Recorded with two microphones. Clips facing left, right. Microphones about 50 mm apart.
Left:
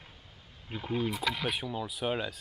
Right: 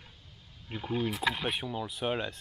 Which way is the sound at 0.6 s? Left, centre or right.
Centre.